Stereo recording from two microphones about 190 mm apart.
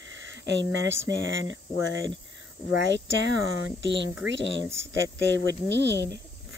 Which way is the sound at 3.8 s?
70° right (ahead or behind).